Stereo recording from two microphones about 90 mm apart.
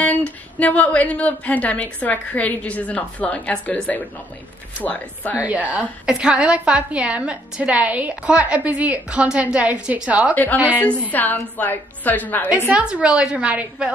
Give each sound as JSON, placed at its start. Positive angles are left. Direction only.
{"t": 0.0, "sound": "a woman's voice", "side_deg": 15}
{"t": 5.4, "sound": "a woman's voice", "side_deg": -15}
{"t": 10.3, "sound": "a woman's voice", "side_deg": 20}
{"t": 12.6, "sound": "a woman's voice", "side_deg": -15}